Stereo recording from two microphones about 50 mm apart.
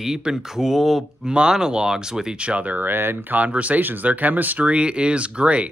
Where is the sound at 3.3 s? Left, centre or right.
Right.